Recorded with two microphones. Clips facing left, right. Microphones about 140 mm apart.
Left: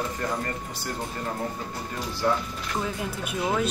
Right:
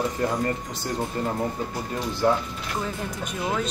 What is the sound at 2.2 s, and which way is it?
Speech, 20° right (ahead or behind).